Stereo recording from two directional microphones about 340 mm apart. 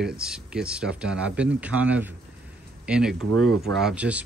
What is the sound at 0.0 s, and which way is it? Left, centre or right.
Speech, centre.